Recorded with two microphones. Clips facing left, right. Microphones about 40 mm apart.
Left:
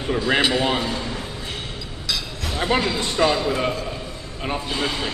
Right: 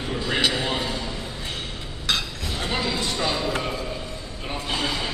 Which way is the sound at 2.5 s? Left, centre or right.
Left.